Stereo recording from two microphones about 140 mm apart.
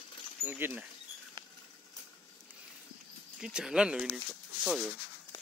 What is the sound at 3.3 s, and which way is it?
Speech, 5° right (ahead or behind).